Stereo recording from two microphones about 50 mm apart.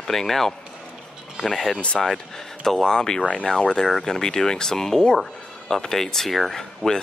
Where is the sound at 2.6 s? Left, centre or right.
Centre.